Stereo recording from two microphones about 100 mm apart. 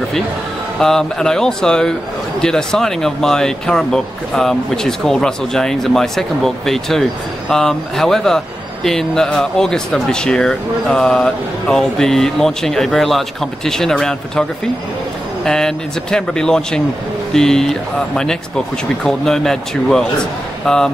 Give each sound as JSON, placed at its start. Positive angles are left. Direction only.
{"t": 0.7, "sound": "speech", "side_deg": 5}
{"t": 15.4, "sound": "speech", "side_deg": 5}